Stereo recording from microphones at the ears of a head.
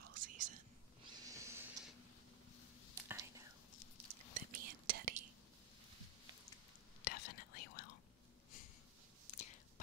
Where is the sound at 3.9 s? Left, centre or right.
Right.